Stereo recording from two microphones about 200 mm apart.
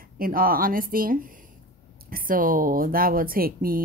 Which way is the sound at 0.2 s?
45° right (ahead or behind).